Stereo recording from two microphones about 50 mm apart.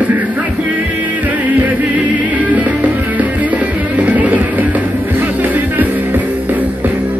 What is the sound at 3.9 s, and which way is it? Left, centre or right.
Music, right.